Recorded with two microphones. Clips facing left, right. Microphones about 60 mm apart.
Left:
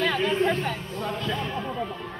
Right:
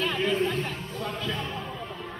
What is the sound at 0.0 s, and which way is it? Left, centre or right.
Music, left.